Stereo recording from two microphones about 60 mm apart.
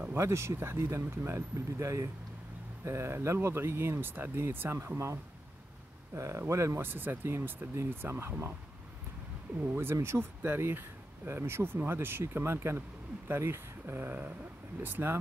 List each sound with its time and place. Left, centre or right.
0.2 s speech: right
6.9 s speech: right
9.7 s speech: right